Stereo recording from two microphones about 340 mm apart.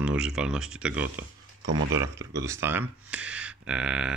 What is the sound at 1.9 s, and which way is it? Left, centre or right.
Speech, centre.